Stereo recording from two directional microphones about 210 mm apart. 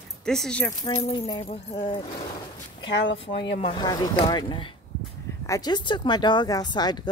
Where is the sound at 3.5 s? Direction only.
25° left (ahead or behind).